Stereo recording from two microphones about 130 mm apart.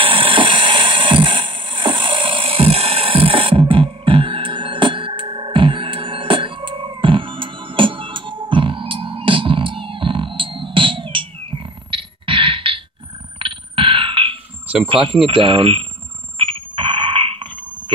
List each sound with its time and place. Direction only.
0.0 s a sound: 40° right (ahead or behind)
14.9 s speech: 40° right (ahead or behind)
16.3 s alarm: 40° right (ahead or behind)